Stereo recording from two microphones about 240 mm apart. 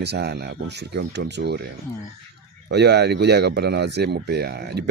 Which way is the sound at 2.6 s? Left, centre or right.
Right.